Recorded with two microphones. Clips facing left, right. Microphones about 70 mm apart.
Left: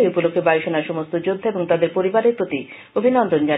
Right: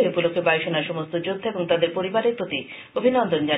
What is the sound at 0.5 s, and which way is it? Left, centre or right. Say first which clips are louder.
Speech: left 5 dB; left.